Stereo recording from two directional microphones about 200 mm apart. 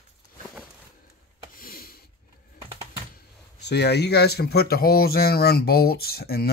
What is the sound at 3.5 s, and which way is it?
Speech, 55° left (ahead or behind).